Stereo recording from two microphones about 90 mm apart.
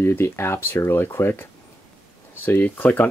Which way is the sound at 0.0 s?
30° left (ahead or behind).